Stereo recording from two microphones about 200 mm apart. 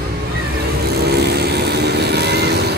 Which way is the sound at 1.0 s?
55° right (ahead or behind).